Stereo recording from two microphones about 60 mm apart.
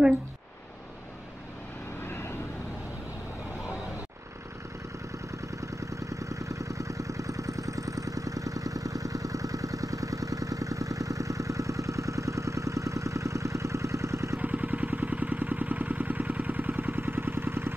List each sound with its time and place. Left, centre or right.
2.0 s vehicle: left
5.1 s vehicle: right
14.4 s vehicle: right